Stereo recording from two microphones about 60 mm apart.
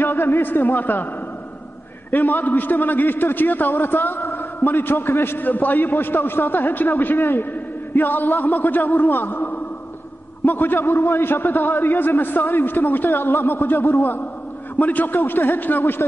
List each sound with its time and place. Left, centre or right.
0.0 s a man's voice: left
2.0 s a man's voice: left